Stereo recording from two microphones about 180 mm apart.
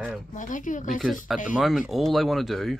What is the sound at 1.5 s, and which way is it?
Speech, 5° right (ahead or behind).